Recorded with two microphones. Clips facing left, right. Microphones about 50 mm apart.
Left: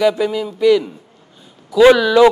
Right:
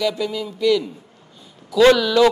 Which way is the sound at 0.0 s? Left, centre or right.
Left.